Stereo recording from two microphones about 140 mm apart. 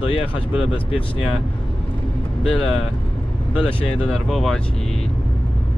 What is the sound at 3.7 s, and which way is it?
Speech, 40° left (ahead or behind).